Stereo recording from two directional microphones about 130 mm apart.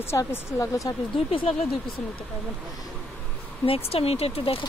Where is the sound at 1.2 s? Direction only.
50° left (ahead or behind).